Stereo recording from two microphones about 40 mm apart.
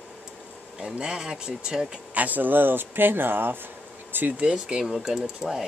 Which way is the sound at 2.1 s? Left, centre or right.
Right.